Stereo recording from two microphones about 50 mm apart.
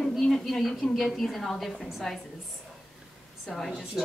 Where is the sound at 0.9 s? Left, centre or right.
Centre.